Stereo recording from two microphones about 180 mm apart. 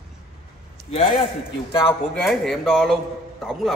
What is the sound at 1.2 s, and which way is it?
Speech, 30° left (ahead or behind).